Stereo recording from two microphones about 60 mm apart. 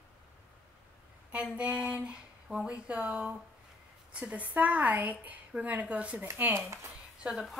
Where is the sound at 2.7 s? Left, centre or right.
Centre.